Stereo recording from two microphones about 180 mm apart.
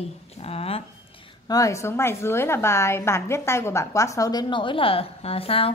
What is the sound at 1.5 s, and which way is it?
A woman's voice, 15° left (ahead or behind).